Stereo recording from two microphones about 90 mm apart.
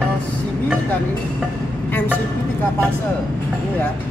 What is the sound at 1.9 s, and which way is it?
Speech, 20° left (ahead or behind).